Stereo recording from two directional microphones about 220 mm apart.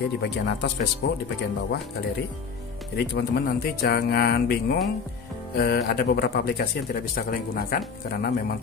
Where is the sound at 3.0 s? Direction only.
45° left (ahead or behind).